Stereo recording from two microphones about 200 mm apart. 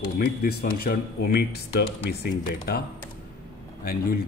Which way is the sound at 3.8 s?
50° left (ahead or behind).